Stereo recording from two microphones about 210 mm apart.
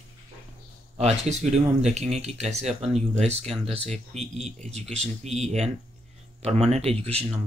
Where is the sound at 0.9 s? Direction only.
30° right (ahead or behind).